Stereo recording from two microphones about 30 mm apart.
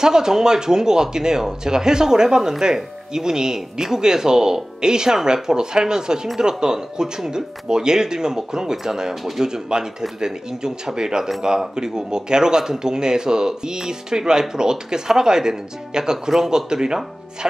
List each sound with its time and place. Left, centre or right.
0.0 s speech: centre